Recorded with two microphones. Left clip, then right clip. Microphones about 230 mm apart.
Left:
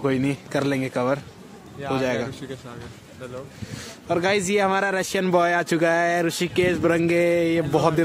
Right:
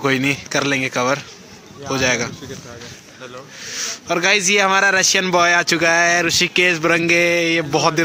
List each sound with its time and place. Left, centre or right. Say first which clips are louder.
0.0 s speech: right 6 dB; centre
4.1 s speech: right 6 dB; centre